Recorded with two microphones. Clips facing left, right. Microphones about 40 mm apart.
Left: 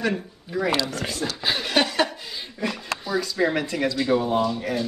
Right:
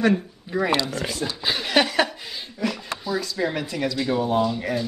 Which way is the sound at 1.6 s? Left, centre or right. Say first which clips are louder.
Right 2 dB; centre.